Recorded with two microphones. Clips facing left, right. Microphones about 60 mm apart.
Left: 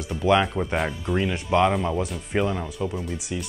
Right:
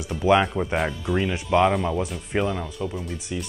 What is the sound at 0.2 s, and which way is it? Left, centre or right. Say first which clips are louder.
Speech: right 1 dB; centre.